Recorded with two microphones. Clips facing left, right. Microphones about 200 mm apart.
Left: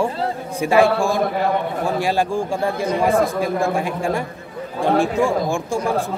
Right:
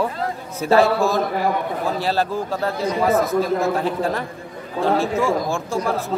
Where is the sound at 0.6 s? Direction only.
15° left (ahead or behind).